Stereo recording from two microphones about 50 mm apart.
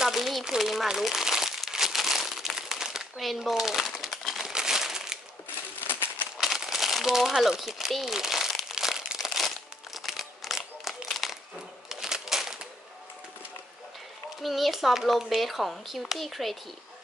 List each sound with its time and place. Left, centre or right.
0.0 s crumpling: centre
0.6 s speech: centre
1.2 s crumpling: centre
4.5 s crumpling: centre
5.9 s a sound: left
6.4 s crumpling: centre
7.8 s speech: centre
8.6 s crumpling: centre
14.4 s speech: centre